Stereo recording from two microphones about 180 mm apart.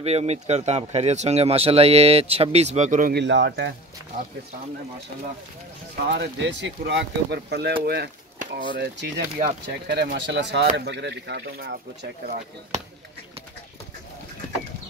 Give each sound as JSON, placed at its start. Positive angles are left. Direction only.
{"t": 0.0, "sound": "speech", "side_deg": -35}
{"t": 3.2, "sound": "speech", "side_deg": -70}
{"t": 6.0, "sound": "speech", "side_deg": -75}
{"t": 10.1, "sound": "speech", "side_deg": -80}